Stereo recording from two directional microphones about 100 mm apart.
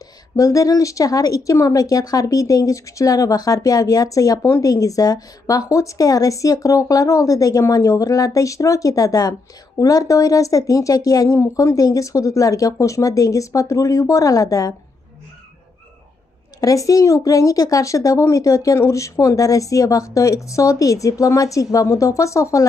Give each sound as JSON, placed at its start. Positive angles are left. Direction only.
{"t": 0.4, "sound": "speech", "side_deg": 35}
{"t": 16.5, "sound": "speech", "side_deg": 35}